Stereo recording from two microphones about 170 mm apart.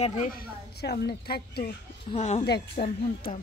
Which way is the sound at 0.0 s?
40° left (ahead or behind).